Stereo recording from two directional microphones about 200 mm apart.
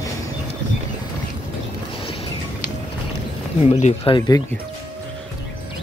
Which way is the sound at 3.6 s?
30° left (ahead or behind).